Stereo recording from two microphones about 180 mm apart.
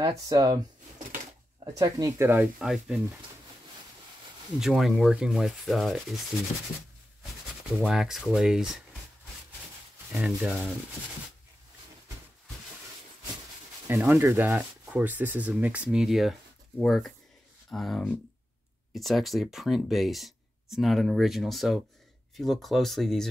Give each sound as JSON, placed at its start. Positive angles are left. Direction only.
{"t": 0.0, "sound": "speech", "side_deg": -20}
{"t": 1.6, "sound": "speech", "side_deg": -20}
{"t": 2.6, "sound": "speech", "side_deg": 0}
{"t": 4.6, "sound": "speech", "side_deg": 0}
{"t": 7.8, "sound": "speech", "side_deg": 0}
{"t": 10.1, "sound": "speech", "side_deg": 0}
{"t": 13.8, "sound": "speech", "side_deg": -10}